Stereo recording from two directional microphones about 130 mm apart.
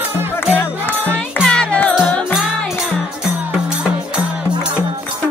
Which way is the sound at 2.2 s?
5° right (ahead or behind).